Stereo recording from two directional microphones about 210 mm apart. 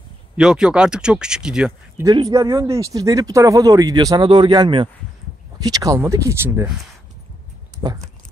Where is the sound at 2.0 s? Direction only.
20° right (ahead or behind).